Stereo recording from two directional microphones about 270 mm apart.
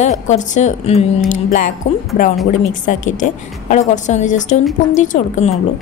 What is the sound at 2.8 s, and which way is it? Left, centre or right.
A woman's voice, left.